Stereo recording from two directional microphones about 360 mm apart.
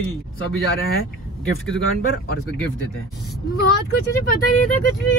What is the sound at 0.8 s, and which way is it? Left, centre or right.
Speech, left.